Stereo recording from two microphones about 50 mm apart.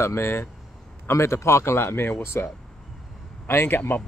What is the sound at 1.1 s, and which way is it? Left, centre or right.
Speech, left.